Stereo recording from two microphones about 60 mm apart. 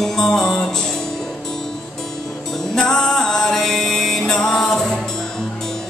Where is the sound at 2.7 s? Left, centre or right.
Centre.